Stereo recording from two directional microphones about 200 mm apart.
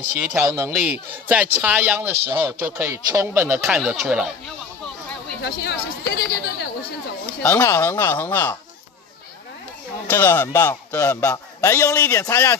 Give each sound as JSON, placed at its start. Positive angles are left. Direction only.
{"t": 0.2, "sound": "speech", "side_deg": -10}
{"t": 3.6, "sound": "speech", "side_deg": 0}
{"t": 5.4, "sound": "a woman's voice", "side_deg": 55}
{"t": 7.4, "sound": "a man's voice", "side_deg": 15}
{"t": 10.0, "sound": "a man's voice", "side_deg": 10}